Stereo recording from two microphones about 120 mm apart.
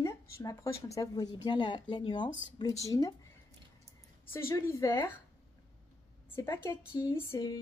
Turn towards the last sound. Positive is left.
turn(degrees=20)  # may be behind; listen again after turning